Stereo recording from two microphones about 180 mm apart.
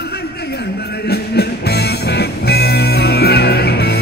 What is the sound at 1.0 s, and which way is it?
Music, 65° left (ahead or behind).